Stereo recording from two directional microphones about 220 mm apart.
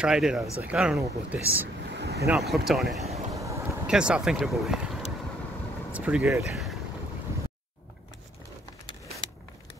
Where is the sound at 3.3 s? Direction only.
15° right (ahead or behind).